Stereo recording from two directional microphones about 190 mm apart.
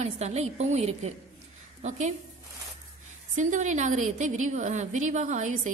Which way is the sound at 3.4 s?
40° right (ahead or behind).